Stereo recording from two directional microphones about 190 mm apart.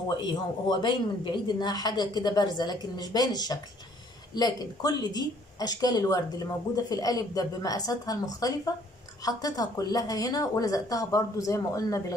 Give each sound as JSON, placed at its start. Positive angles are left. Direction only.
{"t": 0.2, "sound": "speech", "side_deg": 25}